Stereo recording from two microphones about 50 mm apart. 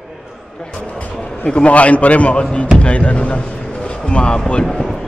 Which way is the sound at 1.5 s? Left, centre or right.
Left.